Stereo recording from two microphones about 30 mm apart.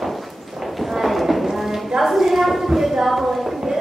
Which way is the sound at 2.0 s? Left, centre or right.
Centre.